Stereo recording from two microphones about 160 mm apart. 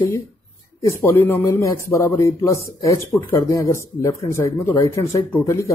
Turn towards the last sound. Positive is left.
turn(degrees=15)  # may be behind; listen again after turning